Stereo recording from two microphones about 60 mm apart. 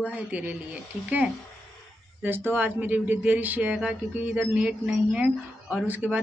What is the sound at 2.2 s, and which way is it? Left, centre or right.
Speech, right.